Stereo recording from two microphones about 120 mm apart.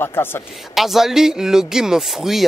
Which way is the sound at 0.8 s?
Centre (ahead or behind).